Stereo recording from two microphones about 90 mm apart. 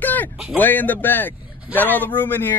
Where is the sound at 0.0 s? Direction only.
20° left (ahead or behind).